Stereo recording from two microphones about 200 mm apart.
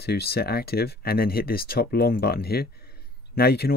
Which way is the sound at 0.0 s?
55° left (ahead or behind).